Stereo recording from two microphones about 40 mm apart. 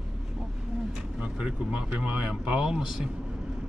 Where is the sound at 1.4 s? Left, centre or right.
Right.